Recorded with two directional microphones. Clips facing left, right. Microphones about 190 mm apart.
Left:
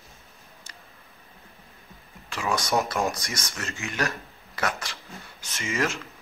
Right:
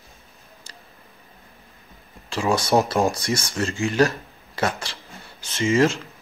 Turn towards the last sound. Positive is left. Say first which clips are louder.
# right 9 dB
turn(degrees=-30)  # may be behind; listen again after turning